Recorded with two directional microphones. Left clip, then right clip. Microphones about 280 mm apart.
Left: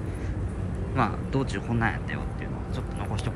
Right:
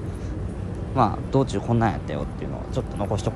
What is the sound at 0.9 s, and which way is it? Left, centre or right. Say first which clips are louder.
Speech: right 6 dB; centre.